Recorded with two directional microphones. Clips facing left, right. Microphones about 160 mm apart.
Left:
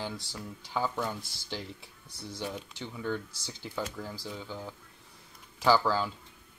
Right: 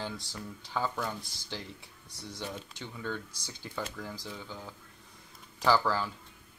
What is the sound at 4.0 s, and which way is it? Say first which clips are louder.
Speech: left 1 dB; 25° left (ahead or behind).